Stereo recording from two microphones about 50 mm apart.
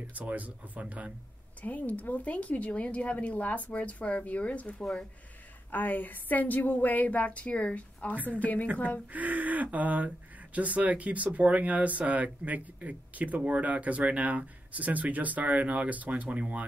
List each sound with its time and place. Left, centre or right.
0.1 s speech: right
1.6 s a woman's voice: left
9.1 s speech: right